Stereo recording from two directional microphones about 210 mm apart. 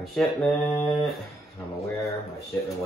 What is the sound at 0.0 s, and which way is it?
Mantra, centre (ahead or behind).